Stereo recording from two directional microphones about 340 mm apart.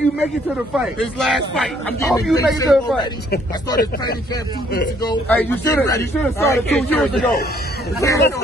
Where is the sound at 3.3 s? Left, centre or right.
Left.